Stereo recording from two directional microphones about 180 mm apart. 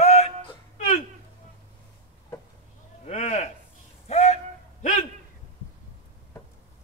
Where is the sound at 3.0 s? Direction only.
35° left (ahead or behind).